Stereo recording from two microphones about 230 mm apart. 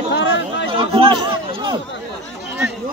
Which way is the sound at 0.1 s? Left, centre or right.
Left.